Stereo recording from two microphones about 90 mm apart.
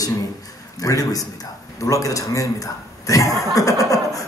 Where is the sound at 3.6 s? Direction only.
40° left (ahead or behind).